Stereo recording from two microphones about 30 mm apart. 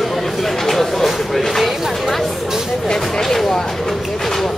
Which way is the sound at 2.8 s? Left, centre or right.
Left.